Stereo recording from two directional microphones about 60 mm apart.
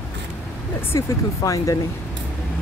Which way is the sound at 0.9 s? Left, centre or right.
Left.